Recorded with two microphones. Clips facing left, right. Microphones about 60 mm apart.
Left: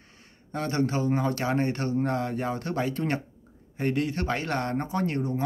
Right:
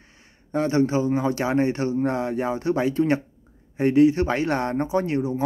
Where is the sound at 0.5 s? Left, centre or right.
Centre.